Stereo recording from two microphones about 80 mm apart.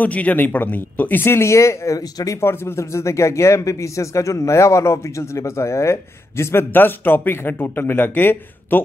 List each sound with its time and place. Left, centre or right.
0.0 s speech: centre
1.2 s speech: left